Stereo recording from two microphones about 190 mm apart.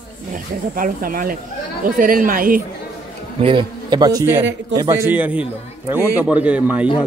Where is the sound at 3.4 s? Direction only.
25° right (ahead or behind).